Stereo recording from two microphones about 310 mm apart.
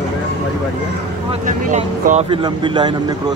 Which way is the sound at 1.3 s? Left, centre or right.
Right.